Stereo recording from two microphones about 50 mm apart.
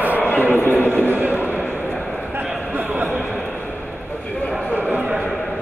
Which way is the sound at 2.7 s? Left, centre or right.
Right.